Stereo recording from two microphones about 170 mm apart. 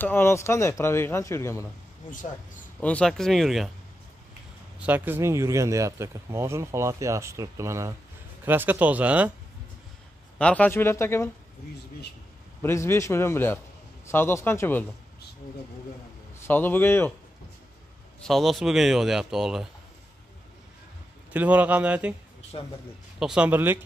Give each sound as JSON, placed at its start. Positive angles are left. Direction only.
{"t": 0.0, "sound": "speech", "side_deg": 15}
{"t": 2.8, "sound": "a man's voice", "side_deg": 5}
{"t": 4.7, "sound": "speech", "side_deg": -10}
{"t": 10.4, "sound": "speech", "side_deg": 10}
{"t": 12.6, "sound": "speech", "side_deg": 15}
{"t": 16.3, "sound": "speech", "side_deg": 10}
{"t": 18.2, "sound": "a man's voice", "side_deg": 0}
{"t": 21.3, "sound": "speech", "side_deg": -10}
{"t": 22.5, "sound": "speech", "side_deg": 30}
{"t": 23.1, "sound": "speech", "side_deg": -5}